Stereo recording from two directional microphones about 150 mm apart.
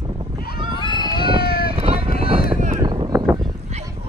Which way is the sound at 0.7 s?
30° left (ahead or behind).